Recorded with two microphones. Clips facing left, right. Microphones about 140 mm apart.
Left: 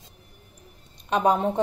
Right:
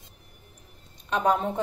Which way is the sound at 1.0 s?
15° left (ahead or behind).